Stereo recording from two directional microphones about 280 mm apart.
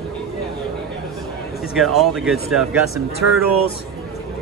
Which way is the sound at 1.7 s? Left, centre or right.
Centre.